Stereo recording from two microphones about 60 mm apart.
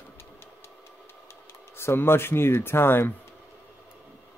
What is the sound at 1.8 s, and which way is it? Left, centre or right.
Speech, left.